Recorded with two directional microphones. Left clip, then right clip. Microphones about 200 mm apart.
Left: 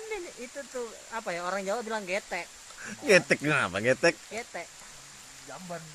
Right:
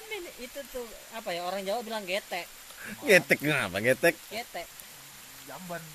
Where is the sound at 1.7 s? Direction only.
15° left (ahead or behind).